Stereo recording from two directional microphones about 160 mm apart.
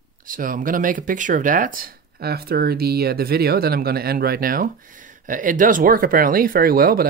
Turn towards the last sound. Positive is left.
turn(degrees=-65)  # may be behind; listen again after turning